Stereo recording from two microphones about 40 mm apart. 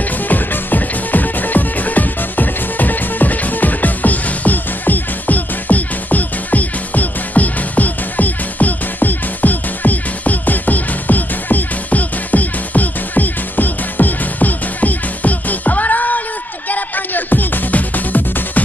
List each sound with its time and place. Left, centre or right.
0.3 s music: left